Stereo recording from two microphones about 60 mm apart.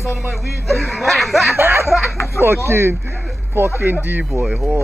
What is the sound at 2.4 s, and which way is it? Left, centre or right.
A man's voice, right.